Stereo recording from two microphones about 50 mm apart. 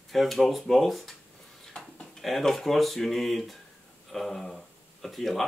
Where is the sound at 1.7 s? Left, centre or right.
Centre.